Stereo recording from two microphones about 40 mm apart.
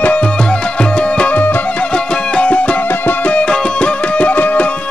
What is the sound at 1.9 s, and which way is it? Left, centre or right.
Music, left.